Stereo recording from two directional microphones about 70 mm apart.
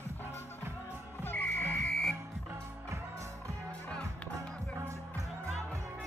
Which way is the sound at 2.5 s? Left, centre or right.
Right.